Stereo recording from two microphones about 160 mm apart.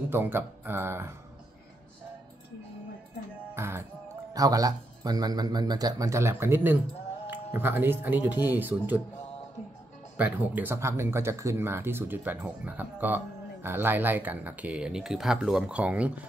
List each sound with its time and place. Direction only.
0.1 s speech: 15° right (ahead or behind)
3.5 s music: 15° right (ahead or behind)
4.3 s speech: 20° right (ahead or behind)
10.1 s speech: 10° right (ahead or behind)